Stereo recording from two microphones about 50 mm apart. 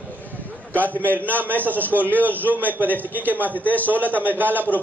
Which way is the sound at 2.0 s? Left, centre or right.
Right.